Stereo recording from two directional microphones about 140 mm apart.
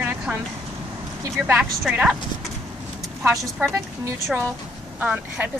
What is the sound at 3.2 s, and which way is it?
Speech, 15° right (ahead or behind).